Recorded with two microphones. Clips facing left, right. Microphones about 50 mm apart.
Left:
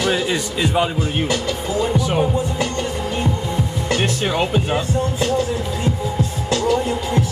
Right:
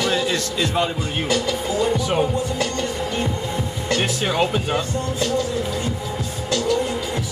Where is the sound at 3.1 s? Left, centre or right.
Centre.